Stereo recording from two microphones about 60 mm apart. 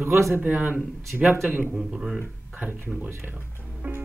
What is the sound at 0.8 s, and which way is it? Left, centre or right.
Speech, centre.